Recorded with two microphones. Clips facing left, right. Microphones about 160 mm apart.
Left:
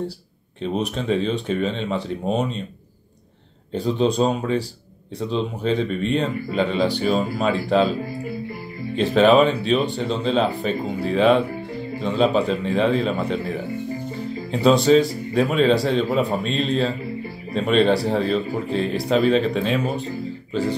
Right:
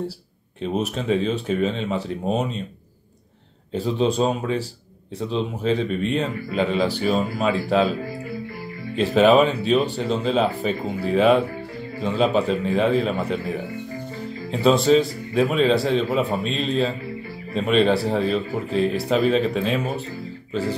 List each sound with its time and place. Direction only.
0.6 s speech: 5° right (ahead or behind)
3.7 s speech: 5° right (ahead or behind)
8.9 s speech: 5° right (ahead or behind)